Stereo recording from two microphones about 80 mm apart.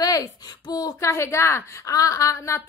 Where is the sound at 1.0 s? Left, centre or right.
Left.